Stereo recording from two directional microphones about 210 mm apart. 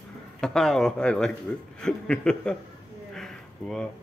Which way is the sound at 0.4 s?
5° left (ahead or behind).